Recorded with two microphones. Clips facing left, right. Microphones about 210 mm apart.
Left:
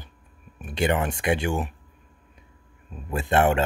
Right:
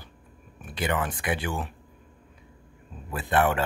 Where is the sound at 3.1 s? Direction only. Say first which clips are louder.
Left 3 dB; 25° left (ahead or behind).